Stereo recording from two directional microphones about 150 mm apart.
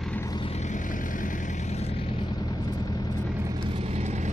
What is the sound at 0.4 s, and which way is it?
Vehicle, 45° left (ahead or behind).